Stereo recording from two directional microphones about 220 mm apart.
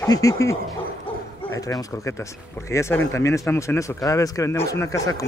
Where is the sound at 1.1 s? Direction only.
25° left (ahead or behind).